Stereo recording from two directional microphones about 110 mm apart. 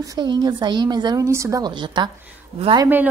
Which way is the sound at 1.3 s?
25° right (ahead or behind).